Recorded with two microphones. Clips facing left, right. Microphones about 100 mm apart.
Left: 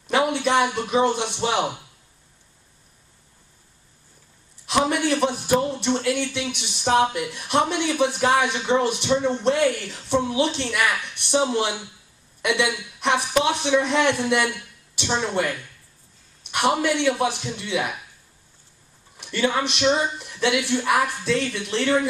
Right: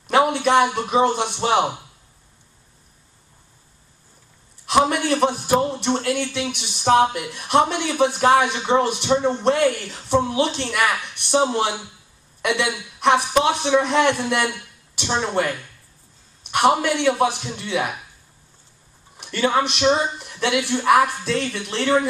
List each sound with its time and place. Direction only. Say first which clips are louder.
0.1 s a sound: right 4 dB; 30° right (ahead or behind)
0.5 s speech: right 3 dB; 30° right (ahead or behind)
4.8 s speech: right 2 dB; 35° right (ahead or behind)
7.1 s speech: left 1 dB; 20° right (ahead or behind)
7.3 s speech: right 4 dB; 30° right (ahead or behind)
14.3 s a sound: even; 30° right (ahead or behind)
15.1 s speech: right 2 dB; 30° right (ahead or behind)
19.2 s a man's voice: right 3 dB; 35° right (ahead or behind)